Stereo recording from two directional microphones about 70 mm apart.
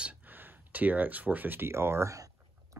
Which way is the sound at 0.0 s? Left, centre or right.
Right.